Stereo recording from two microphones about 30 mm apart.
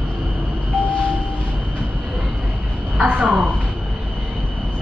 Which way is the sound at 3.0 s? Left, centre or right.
Right.